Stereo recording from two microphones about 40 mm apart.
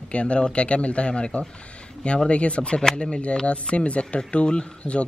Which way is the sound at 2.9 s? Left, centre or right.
Centre.